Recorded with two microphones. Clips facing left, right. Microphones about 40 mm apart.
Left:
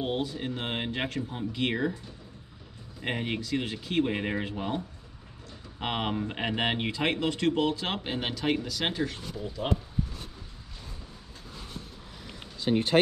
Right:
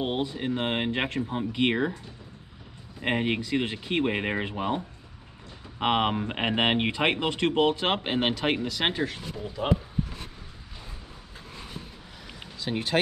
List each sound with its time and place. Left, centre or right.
0.0 s speech: centre
3.0 s speech: right
9.0 s speech: centre